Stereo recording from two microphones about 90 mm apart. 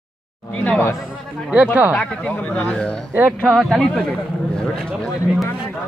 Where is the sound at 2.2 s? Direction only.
15° left (ahead or behind).